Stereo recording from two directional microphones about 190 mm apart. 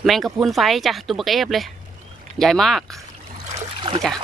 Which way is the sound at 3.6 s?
25° right (ahead or behind).